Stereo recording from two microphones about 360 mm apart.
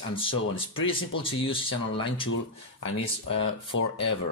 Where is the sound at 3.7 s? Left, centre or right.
Left.